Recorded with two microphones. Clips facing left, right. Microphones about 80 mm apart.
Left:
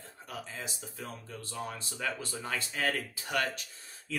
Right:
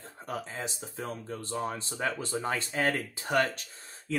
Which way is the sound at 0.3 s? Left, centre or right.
Right.